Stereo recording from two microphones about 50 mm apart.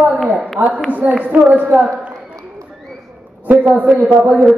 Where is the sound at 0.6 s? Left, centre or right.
Right.